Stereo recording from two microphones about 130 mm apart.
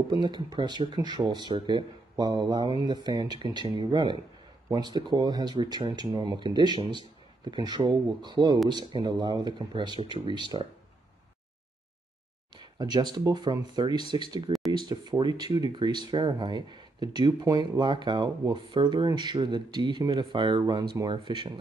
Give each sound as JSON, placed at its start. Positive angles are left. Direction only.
{"t": 0.1, "sound": "speech", "side_deg": -35}
{"t": 12.5, "sound": "speech", "side_deg": -35}